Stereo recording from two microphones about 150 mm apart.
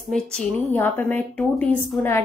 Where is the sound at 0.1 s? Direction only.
10° left (ahead or behind).